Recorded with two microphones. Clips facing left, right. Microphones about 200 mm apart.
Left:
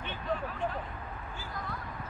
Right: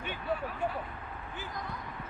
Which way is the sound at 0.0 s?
10° right (ahead or behind).